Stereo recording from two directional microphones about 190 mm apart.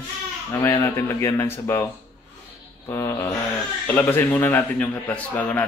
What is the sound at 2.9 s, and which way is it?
A man's voice, 15° left (ahead or behind).